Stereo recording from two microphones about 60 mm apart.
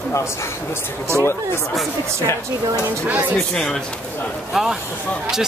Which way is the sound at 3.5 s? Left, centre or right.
Centre.